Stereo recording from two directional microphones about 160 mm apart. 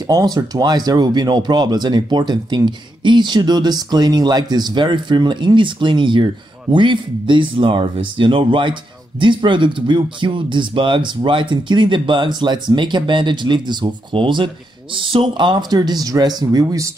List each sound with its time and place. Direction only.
0.0 s speech: 25° right (ahead or behind)